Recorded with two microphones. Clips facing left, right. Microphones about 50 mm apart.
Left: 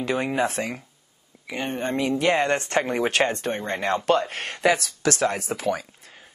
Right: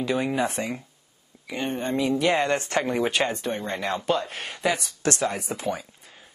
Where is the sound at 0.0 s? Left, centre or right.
Left.